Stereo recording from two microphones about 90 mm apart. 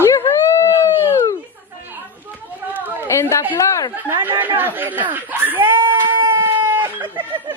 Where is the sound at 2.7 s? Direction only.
20° right (ahead or behind).